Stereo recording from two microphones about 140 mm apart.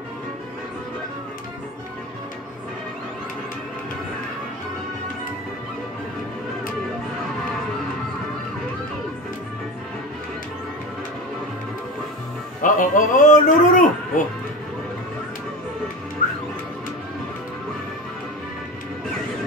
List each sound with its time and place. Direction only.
12.6 s a man's voice: 70° left (ahead or behind)